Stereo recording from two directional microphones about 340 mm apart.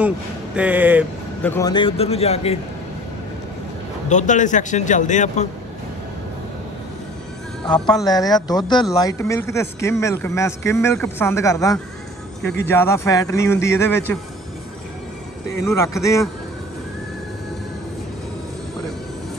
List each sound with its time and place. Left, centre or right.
0.6 s speech: centre
1.4 s speech: centre
4.1 s speech: left
7.8 s speech: centre
15.5 s speech: centre